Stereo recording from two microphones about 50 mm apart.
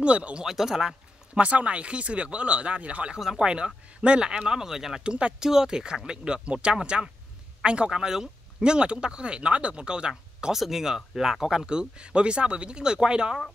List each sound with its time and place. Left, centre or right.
0.0 s speech: right
0.5 s speech: centre
1.4 s speech: right; by 5.0 s centre
5.0 s speech: right
5.4 s speech: centre
10.5 s speech: centre